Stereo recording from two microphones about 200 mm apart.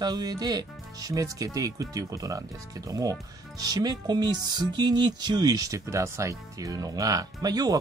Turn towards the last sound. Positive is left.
turn(degrees=-20)  # may be behind; listen again after turning